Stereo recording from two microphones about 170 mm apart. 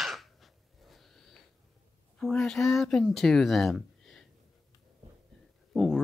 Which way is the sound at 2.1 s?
5° left (ahead or behind).